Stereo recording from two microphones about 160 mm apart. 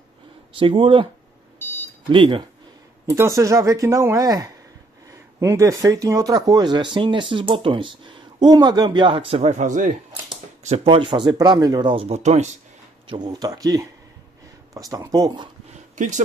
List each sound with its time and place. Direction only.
0.5 s speech: 30° right (ahead or behind)
2.0 s speech: 30° right (ahead or behind)
3.1 s speech: 20° right (ahead or behind); by 12.5 s 45° right (ahead or behind)
13.0 s speech: 30° right (ahead or behind)